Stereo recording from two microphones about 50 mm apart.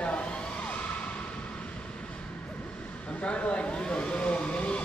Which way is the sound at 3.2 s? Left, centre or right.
Left.